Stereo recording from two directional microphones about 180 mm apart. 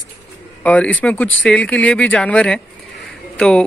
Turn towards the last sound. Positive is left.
turn(degrees=5)  # may be behind; listen again after turning